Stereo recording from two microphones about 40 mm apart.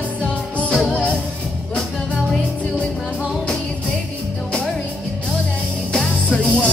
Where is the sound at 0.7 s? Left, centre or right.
Centre.